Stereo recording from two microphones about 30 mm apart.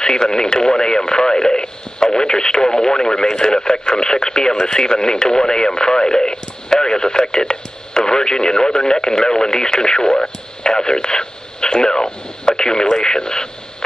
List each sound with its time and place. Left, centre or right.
0.0 s speech: left